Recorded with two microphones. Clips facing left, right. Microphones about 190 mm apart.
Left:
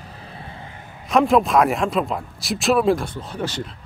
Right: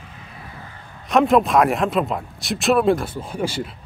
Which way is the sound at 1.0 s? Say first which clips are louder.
Right 1 dB; centre (ahead or behind).